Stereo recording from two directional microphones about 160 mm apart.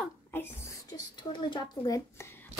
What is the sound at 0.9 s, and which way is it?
Speech, 30° left (ahead or behind).